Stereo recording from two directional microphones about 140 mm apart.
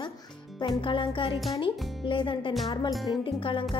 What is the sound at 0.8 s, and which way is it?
A woman's voice, 40° left (ahead or behind).